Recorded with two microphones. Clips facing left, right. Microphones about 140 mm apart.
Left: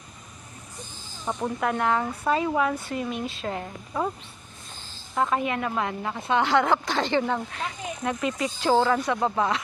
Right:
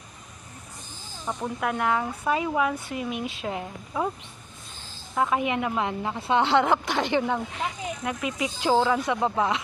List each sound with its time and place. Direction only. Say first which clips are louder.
1.2 s speech: left 2 dB; centre (ahead or behind)
5.1 s speech: even; 5° right (ahead or behind)
5.4 s speech: right 1 dB; 15° right (ahead or behind)